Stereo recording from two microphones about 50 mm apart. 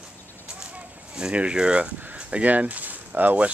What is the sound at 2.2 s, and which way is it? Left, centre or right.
Speech, right.